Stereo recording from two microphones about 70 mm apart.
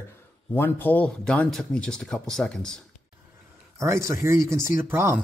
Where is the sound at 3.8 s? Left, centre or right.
Right.